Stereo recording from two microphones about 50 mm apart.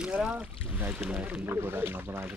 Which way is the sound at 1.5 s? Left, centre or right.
Right.